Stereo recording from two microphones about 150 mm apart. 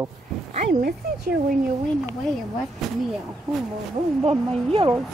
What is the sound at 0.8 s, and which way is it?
Speech, 90° right.